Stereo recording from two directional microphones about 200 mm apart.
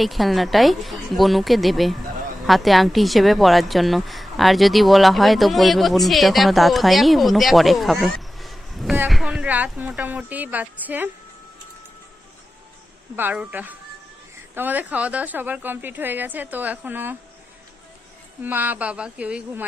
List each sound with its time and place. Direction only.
0.0 s a woman's voice: centre (ahead or behind)
13.1 s a woman's voice: 10° right (ahead or behind)
18.4 s a woman's voice: 10° right (ahead or behind)